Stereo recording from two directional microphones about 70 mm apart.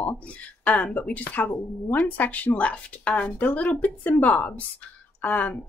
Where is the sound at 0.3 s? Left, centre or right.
Centre.